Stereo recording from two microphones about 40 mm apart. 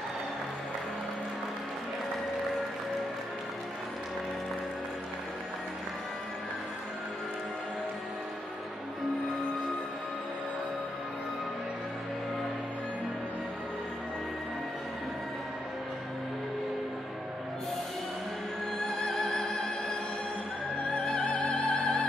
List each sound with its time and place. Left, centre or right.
18.8 s music: centre
20.9 s music: left